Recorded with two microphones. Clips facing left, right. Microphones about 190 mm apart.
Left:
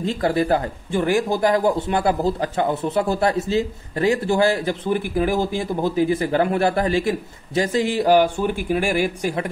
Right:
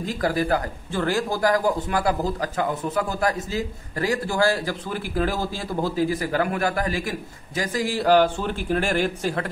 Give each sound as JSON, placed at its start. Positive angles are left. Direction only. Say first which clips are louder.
{"t": 0.0, "sound": "speech", "louder": "left 3 dB", "side_deg": 25}